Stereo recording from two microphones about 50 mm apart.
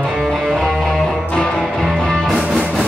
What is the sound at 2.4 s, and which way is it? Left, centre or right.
Music, centre.